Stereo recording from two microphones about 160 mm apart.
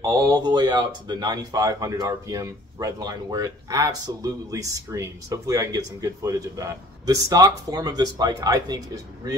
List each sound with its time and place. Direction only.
0.0 s speech: 20° right (ahead or behind)